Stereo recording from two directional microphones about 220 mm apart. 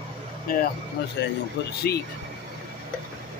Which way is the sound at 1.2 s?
50° left (ahead or behind).